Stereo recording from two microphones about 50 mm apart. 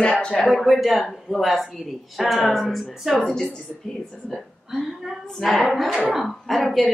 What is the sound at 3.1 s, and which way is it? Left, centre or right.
A woman's voice, centre.